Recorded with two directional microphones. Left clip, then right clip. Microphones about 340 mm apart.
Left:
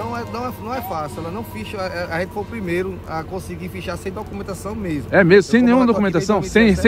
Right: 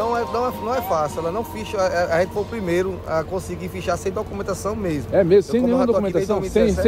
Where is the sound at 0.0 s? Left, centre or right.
Centre.